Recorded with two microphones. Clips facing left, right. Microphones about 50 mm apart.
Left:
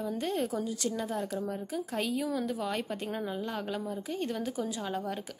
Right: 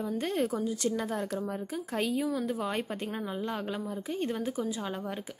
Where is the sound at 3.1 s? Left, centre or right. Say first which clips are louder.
Even; centre.